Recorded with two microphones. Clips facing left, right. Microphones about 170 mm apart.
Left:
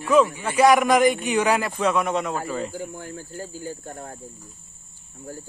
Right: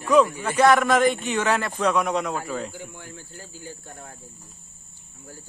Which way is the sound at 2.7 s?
45° left (ahead or behind).